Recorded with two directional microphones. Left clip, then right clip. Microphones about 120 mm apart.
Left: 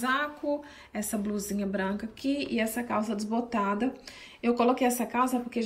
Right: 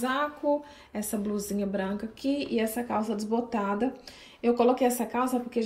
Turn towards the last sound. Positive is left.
turn(degrees=-15)  # may be behind; listen again after turning